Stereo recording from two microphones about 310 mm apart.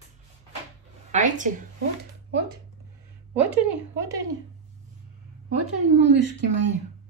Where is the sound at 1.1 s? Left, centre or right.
Right.